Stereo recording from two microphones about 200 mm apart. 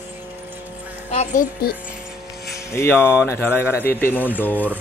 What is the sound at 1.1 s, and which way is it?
Speech, 35° left (ahead or behind).